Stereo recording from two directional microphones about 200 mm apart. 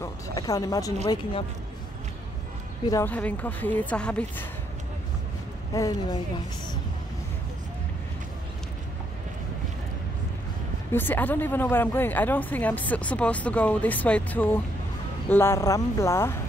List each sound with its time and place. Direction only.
0.0 s a sound: 20° left (ahead or behind)
1.0 s speech: 20° left (ahead or behind)
2.9 s speech: 10° left (ahead or behind)
5.7 s speech: 20° left (ahead or behind)
10.9 s speech: 10° left (ahead or behind)